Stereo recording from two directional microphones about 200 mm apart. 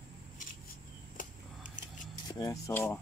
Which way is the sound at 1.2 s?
40° left (ahead or behind).